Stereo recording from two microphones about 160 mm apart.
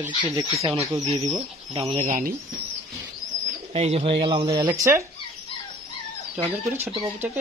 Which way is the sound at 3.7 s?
40° right (ahead or behind).